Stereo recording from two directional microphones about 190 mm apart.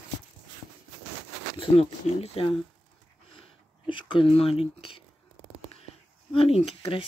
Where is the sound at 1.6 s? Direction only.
30° left (ahead or behind).